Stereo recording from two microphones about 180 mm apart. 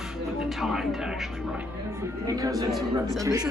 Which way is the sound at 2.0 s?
20° right (ahead or behind).